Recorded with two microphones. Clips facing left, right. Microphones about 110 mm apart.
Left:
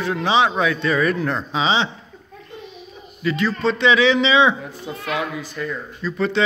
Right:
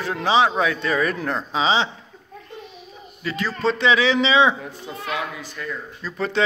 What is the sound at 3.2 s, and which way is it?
Speech, 35° right (ahead or behind).